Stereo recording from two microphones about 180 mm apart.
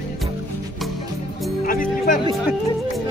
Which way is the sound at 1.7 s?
50° left (ahead or behind).